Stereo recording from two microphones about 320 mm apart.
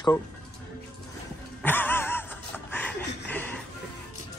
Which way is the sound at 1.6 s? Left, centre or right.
Centre.